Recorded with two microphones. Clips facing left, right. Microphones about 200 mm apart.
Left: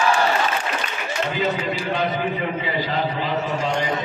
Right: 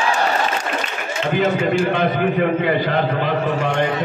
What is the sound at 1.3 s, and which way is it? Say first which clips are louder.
A man's voice: right 9 dB; 50° right (ahead or behind).